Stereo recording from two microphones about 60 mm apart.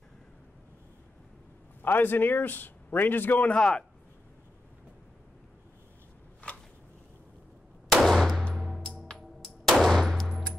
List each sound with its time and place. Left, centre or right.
1.8 s a man's voice: left; by 3.8 s centre
6.4 s a sound: left
7.9 s gunshot: centre
8.5 s music: centre
9.0 s music: centre
9.7 s gunshot: centre